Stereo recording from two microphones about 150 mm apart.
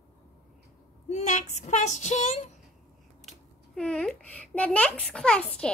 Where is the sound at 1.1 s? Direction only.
50° left (ahead or behind).